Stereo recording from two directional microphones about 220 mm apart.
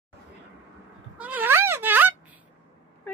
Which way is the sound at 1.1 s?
5° right (ahead or behind).